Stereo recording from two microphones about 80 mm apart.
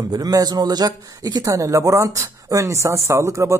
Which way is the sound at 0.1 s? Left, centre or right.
Right.